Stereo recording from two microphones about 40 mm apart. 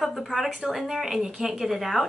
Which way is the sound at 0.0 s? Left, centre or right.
Centre.